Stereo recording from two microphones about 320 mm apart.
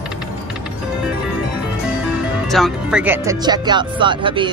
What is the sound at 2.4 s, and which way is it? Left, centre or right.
Speech, centre.